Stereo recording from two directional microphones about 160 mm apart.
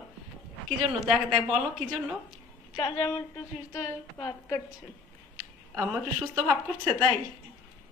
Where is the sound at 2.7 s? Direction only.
25° left (ahead or behind).